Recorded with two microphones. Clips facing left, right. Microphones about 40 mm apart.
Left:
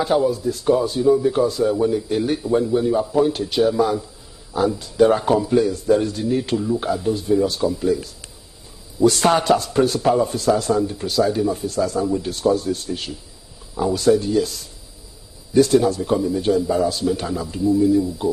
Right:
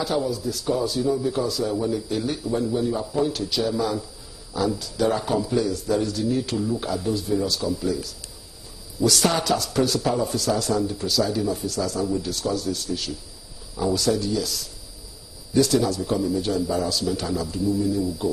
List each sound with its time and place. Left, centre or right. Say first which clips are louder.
0.0 s a man's voice: left 6 dB; left